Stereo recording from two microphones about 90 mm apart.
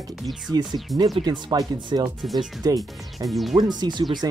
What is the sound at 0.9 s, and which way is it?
Speech, 50° right (ahead or behind).